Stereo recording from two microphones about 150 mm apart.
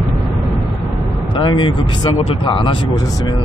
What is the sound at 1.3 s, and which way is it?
Speech, 35° left (ahead or behind).